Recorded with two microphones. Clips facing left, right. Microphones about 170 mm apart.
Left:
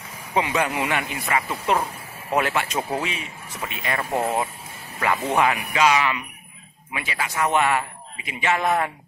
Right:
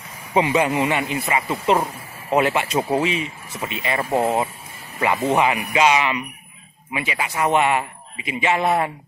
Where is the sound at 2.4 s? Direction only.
10° right (ahead or behind).